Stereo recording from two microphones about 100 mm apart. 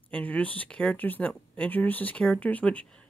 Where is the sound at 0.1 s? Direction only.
15° left (ahead or behind).